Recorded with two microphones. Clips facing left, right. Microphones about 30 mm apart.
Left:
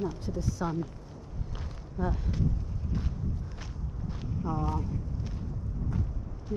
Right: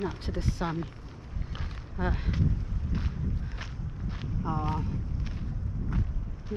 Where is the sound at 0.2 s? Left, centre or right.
Right.